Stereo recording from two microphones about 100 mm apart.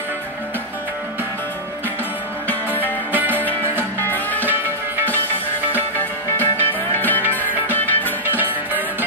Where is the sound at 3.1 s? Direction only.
20° right (ahead or behind).